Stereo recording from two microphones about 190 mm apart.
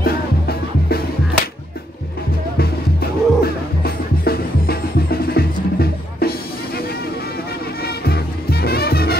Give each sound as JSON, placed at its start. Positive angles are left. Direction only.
{"t": 0.0, "sound": "music", "side_deg": 55}
{"t": 3.0, "sound": "music", "side_deg": 55}
{"t": 7.8, "sound": "music", "side_deg": 55}